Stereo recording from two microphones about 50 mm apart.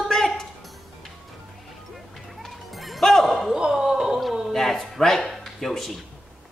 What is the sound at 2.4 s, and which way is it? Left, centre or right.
Music, centre.